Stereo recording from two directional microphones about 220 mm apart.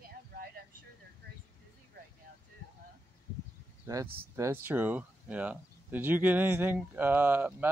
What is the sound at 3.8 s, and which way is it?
Speech, 15° right (ahead or behind).